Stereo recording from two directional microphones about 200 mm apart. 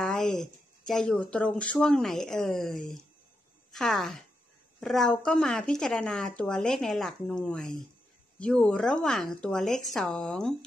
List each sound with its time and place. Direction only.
0.0 s speech: 5° left (ahead or behind)